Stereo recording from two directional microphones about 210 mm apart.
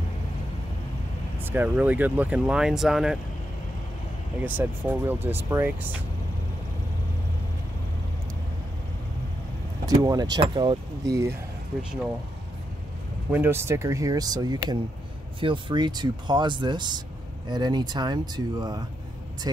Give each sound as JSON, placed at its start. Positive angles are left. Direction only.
{"t": 1.4, "sound": "speech", "side_deg": -10}
{"t": 4.4, "sound": "speech", "side_deg": -10}
{"t": 9.8, "sound": "speech", "side_deg": -15}
{"t": 13.3, "sound": "speech", "side_deg": -10}